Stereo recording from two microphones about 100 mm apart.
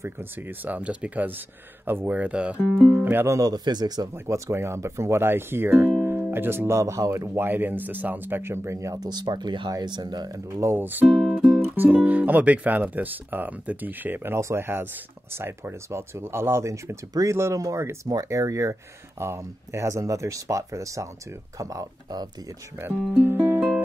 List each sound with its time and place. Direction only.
0.0 s speech: 20° right (ahead or behind)
3.3 s speech: 40° right (ahead or behind)
4.1 s speech: 25° right (ahead or behind)
11.1 s music: centre (ahead or behind)
11.7 s speech: 15° right (ahead or behind); by 22.3 s 35° right (ahead or behind)
23.1 s music: 20° right (ahead or behind)